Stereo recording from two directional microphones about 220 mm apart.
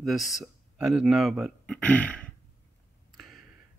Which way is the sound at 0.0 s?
Centre (ahead or behind).